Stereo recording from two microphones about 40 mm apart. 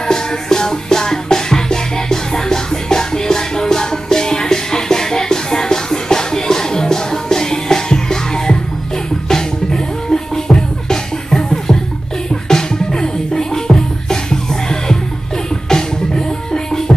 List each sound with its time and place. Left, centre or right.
0.0 s music: centre